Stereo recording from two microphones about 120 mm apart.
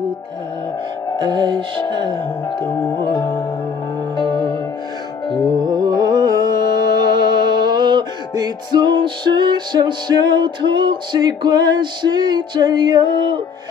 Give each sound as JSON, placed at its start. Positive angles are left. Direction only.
{"t": 1.1, "sound": "music", "side_deg": -35}
{"t": 2.6, "sound": "music", "side_deg": 20}
{"t": 5.6, "sound": "music", "side_deg": -35}